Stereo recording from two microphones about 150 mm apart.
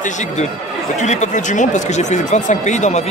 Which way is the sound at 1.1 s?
55° left (ahead or behind).